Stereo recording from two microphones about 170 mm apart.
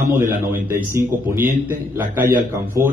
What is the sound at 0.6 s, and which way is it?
A man's voice, 15° right (ahead or behind).